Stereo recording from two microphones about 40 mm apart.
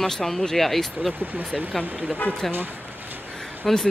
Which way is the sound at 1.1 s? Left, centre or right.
Right.